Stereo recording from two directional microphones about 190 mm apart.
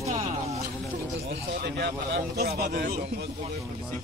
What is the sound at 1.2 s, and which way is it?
Speech, 60° right (ahead or behind).